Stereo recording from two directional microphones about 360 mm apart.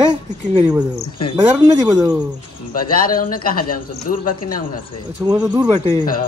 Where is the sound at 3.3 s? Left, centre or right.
Left.